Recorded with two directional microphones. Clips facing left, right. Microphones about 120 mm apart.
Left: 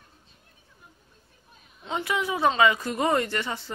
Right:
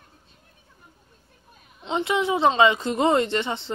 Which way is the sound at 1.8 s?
20° right (ahead or behind).